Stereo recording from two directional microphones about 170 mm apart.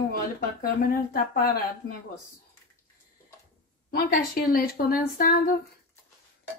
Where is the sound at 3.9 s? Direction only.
60° left (ahead or behind).